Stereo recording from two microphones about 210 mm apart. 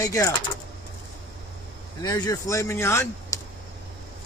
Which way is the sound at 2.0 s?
20° left (ahead or behind).